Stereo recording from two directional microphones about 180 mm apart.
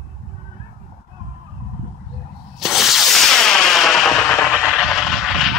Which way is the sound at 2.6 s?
Centre (ahead or behind).